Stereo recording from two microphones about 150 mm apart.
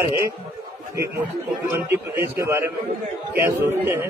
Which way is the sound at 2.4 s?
15° right (ahead or behind).